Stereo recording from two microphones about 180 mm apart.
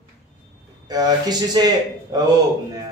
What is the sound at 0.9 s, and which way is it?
Speech, 20° right (ahead or behind).